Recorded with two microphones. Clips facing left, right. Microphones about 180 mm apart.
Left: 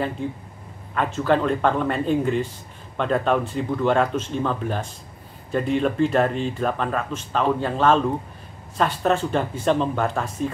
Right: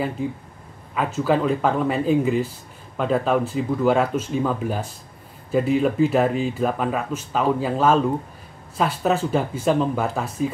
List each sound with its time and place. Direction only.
0.9 s speech: 5° right (ahead or behind)